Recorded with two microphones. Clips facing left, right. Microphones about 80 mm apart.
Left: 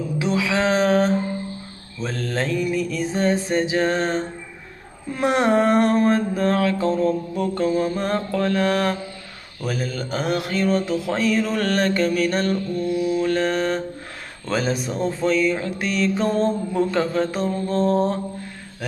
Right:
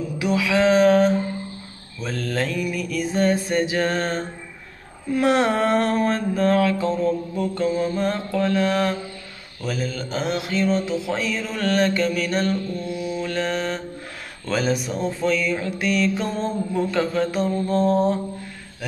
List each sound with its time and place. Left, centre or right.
0.2 s a sound: left
2.0 s mantra: left
6.5 s music: left
6.9 s a sound: left
13.2 s music: left
17.4 s mantra: right